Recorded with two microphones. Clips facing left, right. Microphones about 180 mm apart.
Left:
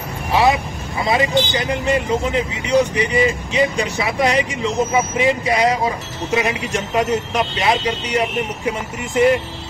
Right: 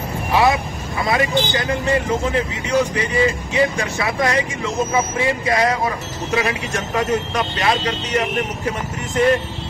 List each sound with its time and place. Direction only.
0.3 s vehicle: 15° left (ahead or behind)
1.0 s speech: 20° left (ahead or behind)